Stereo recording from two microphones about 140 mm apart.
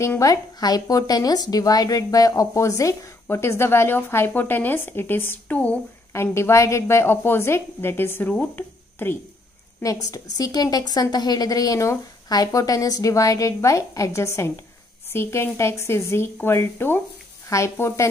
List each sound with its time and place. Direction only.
0.0 s a woman's voice: 20° left (ahead or behind)